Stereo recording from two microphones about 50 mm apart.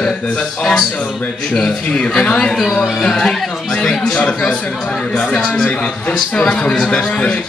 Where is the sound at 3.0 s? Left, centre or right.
Centre.